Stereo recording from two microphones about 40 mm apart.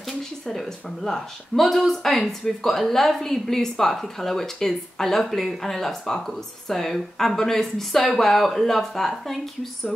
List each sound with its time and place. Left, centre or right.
0.5 s speech: centre